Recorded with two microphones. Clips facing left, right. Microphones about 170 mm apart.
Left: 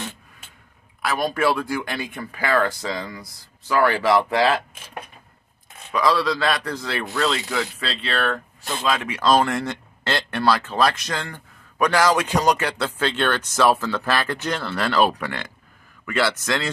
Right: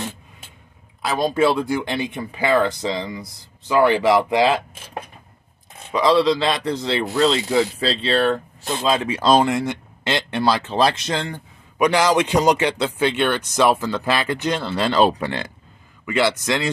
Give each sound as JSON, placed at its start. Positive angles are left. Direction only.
{"t": 1.0, "sound": "speech", "side_deg": -20}
{"t": 5.9, "sound": "speech", "side_deg": -25}
{"t": 9.5, "sound": "a man's voice", "side_deg": -15}